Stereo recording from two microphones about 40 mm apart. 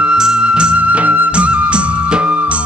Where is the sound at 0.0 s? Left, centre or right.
Centre; by 1.3 s right.